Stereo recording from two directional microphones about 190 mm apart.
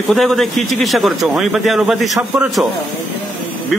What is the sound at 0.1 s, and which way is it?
A man's voice, centre (ahead or behind).